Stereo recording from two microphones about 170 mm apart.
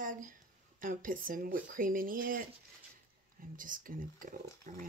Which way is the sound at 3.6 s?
55° right (ahead or behind).